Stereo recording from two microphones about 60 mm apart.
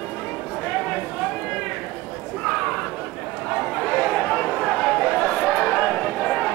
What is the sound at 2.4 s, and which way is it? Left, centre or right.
Chatter, centre.